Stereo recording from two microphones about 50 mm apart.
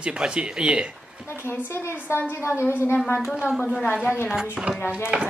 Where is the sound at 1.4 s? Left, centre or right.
Left.